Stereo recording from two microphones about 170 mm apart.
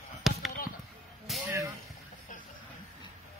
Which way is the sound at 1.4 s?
20° right (ahead or behind).